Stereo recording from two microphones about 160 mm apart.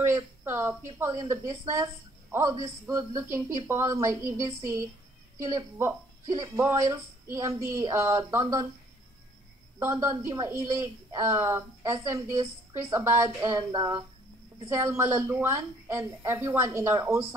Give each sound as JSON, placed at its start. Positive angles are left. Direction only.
{"t": 0.0, "sound": "a woman's voice", "side_deg": -15}
{"t": 9.8, "sound": "a woman's voice", "side_deg": -15}